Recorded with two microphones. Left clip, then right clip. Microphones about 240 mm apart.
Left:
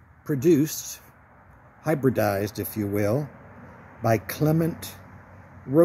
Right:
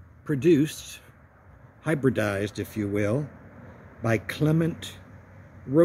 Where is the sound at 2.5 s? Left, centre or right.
Left.